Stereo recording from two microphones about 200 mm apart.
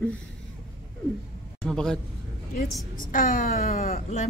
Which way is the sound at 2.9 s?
40° left (ahead or behind).